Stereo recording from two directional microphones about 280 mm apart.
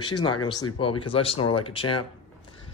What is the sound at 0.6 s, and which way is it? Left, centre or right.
Speech, centre.